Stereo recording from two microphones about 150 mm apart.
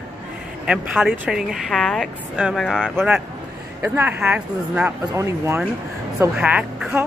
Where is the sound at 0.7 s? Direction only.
10° right (ahead or behind).